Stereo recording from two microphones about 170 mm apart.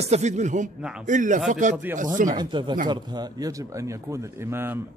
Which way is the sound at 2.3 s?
25° right (ahead or behind).